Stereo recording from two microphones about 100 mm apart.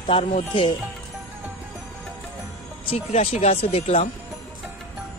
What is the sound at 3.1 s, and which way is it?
Speech, 90° left.